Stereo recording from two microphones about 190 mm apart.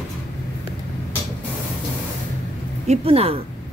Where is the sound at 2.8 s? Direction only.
35° right (ahead or behind).